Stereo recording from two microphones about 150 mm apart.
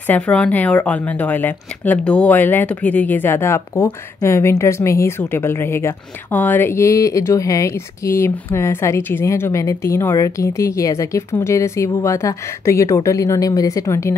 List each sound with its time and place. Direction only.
0.0 s speech: 10° left (ahead or behind)